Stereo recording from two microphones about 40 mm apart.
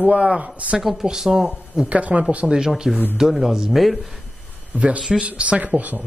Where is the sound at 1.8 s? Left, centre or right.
Right.